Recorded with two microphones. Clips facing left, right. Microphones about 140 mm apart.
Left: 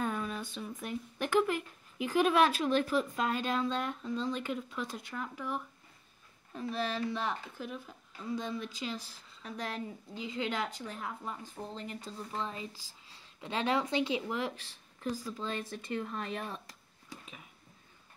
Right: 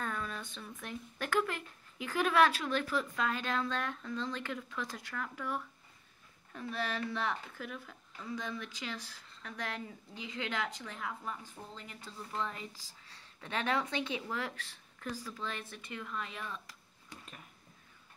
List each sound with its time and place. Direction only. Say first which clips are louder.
0.0 s speech: left 4 dB; 15° left (ahead or behind)
6.5 s speech: left 3 dB; 30° left (ahead or behind)
12.0 s speech: right 3 dB; 20° left (ahead or behind)
15.7 s speech: left 6 dB; 35° left (ahead or behind)